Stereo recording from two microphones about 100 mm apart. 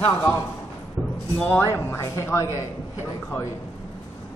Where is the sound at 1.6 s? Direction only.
30° left (ahead or behind).